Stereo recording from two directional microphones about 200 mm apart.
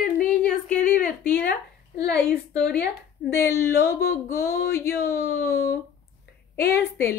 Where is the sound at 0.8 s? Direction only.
45° left (ahead or behind).